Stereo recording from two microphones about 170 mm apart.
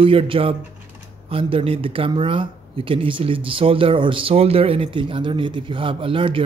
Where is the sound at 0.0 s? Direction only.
30° right (ahead or behind).